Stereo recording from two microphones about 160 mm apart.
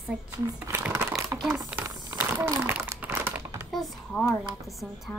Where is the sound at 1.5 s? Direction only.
10° right (ahead or behind).